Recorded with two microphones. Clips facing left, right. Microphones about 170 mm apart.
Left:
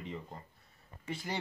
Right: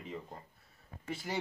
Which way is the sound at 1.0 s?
5° right (ahead or behind).